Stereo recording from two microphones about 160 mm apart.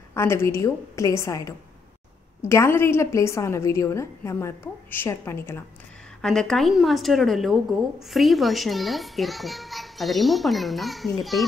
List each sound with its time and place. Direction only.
0.1 s a woman's voice: 15° left (ahead or behind)
6.2 s a child's voice: 5° left (ahead or behind)